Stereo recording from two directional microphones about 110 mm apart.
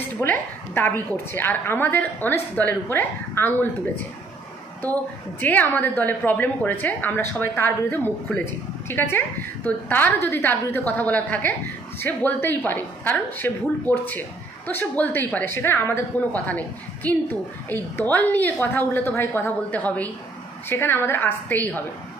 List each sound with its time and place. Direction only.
0.2 s a woman's voice: 20° left (ahead or behind)
5.4 s a woman's voice: 15° left (ahead or behind)